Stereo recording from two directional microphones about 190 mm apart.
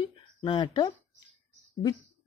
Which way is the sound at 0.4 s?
25° left (ahead or behind).